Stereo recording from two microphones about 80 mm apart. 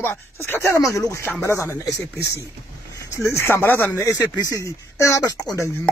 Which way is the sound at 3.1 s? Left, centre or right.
Left.